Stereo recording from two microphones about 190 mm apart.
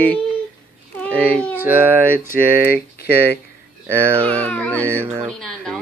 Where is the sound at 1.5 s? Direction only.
10° right (ahead or behind).